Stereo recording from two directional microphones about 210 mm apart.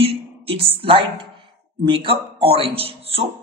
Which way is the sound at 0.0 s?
25° right (ahead or behind).